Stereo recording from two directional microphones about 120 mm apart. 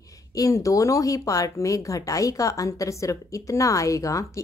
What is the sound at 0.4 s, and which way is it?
Speech, 25° left (ahead or behind).